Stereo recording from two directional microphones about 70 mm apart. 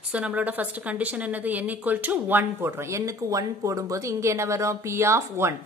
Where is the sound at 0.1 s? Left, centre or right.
Centre.